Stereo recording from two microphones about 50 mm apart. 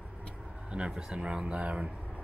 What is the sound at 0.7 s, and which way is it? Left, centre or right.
Speech, right.